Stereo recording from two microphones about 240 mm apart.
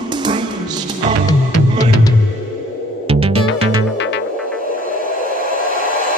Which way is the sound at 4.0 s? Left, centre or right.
Left.